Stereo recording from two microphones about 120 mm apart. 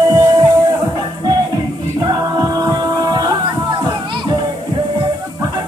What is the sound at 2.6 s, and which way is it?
Music, 35° right (ahead or behind).